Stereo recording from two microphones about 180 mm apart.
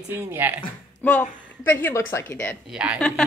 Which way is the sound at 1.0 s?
10° left (ahead or behind).